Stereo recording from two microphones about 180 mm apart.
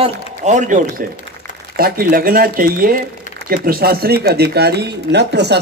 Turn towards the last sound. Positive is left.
turn(degrees=-70)  # may be behind; listen again after turning